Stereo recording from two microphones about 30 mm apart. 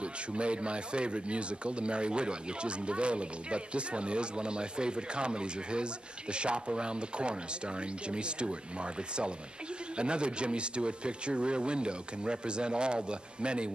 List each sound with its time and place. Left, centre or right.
0.0 s speech: right